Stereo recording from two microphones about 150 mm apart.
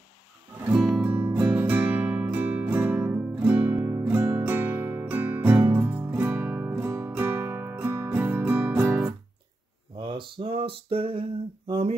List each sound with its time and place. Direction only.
1.0 s music: 10° right (ahead or behind)
9.9 s a sound: 35° right (ahead or behind)
11.6 s speech: 35° right (ahead or behind)